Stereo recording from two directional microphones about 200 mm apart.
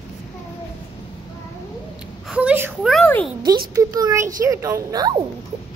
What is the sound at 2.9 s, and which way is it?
Speech, 5° left (ahead or behind).